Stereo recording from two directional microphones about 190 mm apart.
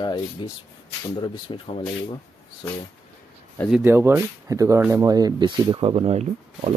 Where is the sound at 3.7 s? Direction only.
10° right (ahead or behind); by 6.6 s 35° right (ahead or behind).